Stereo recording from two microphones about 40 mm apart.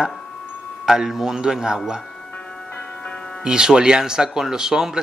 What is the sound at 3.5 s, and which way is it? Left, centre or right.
Speech, centre.